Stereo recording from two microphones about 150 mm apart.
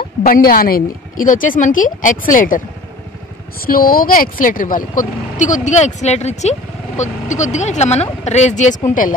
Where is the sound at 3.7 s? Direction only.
75° left (ahead or behind).